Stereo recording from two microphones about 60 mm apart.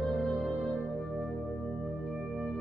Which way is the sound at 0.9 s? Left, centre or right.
Centre.